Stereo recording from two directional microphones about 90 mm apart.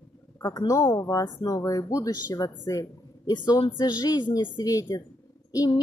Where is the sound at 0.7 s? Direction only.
35° left (ahead or behind); by 4.5 s 55° left (ahead or behind).